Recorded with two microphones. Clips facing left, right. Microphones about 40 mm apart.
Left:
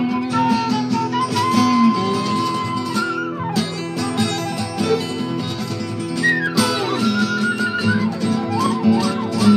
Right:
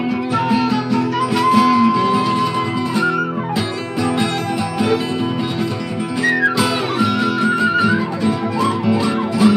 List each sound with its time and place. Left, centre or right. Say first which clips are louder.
0.4 s music: even; centre
3.5 s music: right 2 dB; right
6.2 s music: right 2 dB; right